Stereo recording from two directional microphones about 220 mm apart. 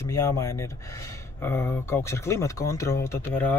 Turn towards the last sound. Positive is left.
turn(degrees=10)  # may be behind; listen again after turning